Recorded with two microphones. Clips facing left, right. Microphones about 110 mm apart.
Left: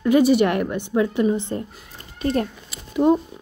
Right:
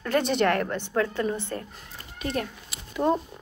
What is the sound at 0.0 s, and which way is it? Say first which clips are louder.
Speech: left 7 dB; 10° left (ahead or behind).